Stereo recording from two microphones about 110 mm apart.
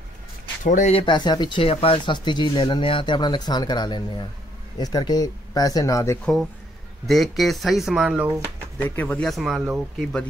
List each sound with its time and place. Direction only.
0.7 s speech: 80° left
1.0 s speech: 45° left (ahead or behind)
7.1 s speech: centre (ahead or behind)
8.8 s speech: 15° left (ahead or behind)
9.2 s speech: centre (ahead or behind)